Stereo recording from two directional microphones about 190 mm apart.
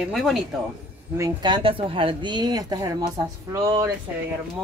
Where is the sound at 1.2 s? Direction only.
25° right (ahead or behind).